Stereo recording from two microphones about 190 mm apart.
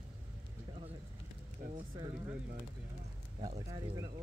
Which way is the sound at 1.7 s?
25° right (ahead or behind).